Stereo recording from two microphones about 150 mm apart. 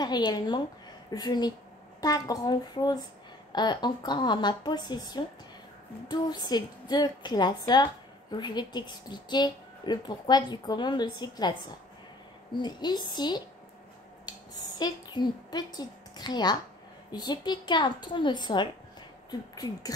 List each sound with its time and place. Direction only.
0.0 s a woman's voice: 30° left (ahead or behind)
12.6 s a woman's voice: 30° left (ahead or behind)
14.8 s a woman's voice: 25° left (ahead or behind)